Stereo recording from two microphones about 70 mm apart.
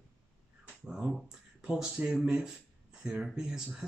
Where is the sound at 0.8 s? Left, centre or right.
Centre.